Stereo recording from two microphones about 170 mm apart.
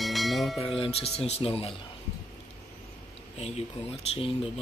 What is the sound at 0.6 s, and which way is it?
Speech, 35° left (ahead or behind).